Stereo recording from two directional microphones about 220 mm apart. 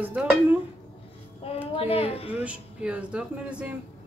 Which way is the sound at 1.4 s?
25° left (ahead or behind).